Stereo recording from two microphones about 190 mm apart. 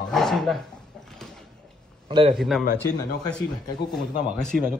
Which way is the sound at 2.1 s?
25° right (ahead or behind).